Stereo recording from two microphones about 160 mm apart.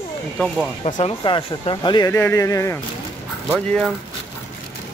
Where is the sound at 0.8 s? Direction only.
40° left (ahead or behind); by 2.8 s 20° left (ahead or behind).